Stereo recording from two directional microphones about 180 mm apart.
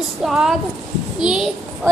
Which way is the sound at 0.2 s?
Centre (ahead or behind).